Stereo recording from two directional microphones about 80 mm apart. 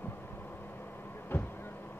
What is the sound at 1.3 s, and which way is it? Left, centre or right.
Vehicle, left.